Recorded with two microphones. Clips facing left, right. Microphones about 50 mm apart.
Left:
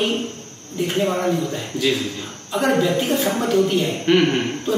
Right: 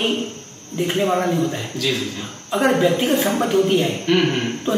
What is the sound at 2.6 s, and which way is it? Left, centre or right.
Speech, centre.